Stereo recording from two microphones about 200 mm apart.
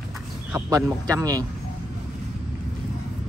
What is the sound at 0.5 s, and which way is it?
Speech, 15° right (ahead or behind).